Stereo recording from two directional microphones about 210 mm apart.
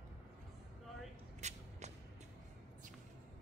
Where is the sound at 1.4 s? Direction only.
35° right (ahead or behind).